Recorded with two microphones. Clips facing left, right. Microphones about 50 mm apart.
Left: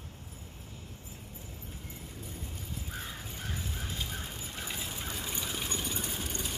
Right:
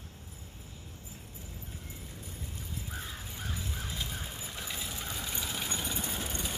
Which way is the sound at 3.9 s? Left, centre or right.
Centre.